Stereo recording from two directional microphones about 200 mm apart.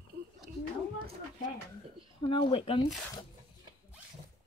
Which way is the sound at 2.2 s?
25° left (ahead or behind).